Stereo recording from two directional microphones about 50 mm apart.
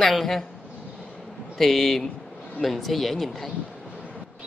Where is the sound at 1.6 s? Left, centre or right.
Centre.